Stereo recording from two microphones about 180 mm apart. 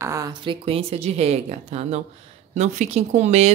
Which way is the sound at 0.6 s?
35° right (ahead or behind).